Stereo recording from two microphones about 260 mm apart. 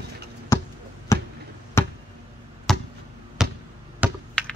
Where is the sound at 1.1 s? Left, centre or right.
Centre.